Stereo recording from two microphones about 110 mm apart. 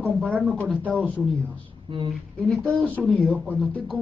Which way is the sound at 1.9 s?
50° right (ahead or behind).